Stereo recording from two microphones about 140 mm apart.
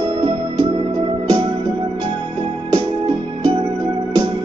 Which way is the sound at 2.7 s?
40° right (ahead or behind).